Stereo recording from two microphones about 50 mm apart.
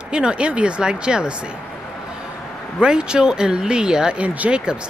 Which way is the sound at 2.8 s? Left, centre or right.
Centre.